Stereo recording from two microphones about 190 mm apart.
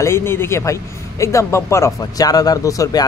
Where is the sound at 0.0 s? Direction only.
15° left (ahead or behind).